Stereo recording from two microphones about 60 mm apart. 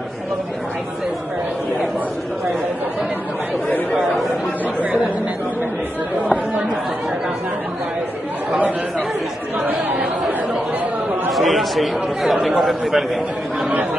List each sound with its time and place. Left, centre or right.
9.6 s chatter: right
11.3 s a man's voice: centre